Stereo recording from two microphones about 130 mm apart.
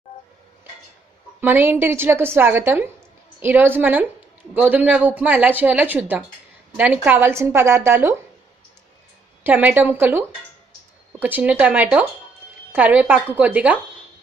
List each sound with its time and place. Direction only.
1.4 s a woman's voice: 15° right (ahead or behind)
9.4 s a woman's voice: 15° right (ahead or behind)